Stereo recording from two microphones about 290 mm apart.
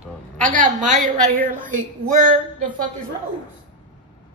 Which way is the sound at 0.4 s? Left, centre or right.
Right.